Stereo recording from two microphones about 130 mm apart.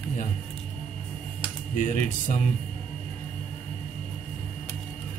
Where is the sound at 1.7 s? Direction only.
80° left.